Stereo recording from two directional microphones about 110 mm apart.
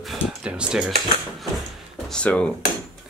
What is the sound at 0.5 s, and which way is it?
Speech, 10° right (ahead or behind).